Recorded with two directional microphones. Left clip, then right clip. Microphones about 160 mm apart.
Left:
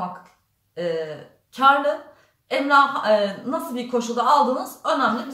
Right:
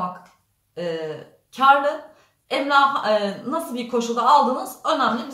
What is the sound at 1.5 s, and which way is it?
Speech, 15° right (ahead or behind).